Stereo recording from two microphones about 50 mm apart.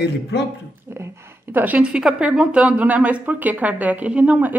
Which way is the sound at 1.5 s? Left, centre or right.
Right.